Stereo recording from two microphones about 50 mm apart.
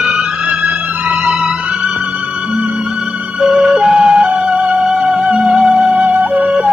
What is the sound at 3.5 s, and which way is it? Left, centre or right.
Music, centre.